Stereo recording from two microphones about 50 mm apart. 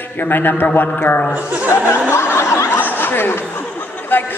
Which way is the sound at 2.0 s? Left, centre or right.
Left.